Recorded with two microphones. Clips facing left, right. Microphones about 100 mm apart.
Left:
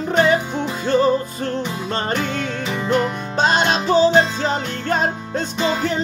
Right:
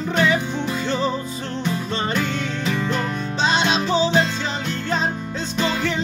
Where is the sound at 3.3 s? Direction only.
45° left (ahead or behind).